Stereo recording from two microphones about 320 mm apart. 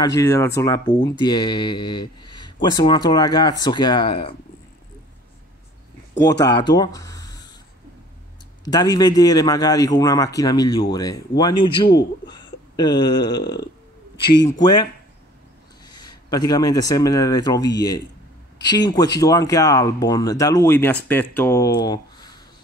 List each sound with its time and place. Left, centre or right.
0.0 s speech: centre
6.1 s speech: centre
8.6 s speech: centre
12.3 s a sound: centre
13.4 s speech: left
14.2 s speech: centre